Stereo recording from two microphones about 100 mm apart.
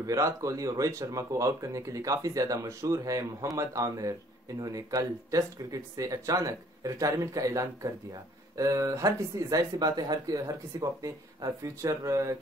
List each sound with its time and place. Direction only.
0.0 s speech: 35° right (ahead or behind)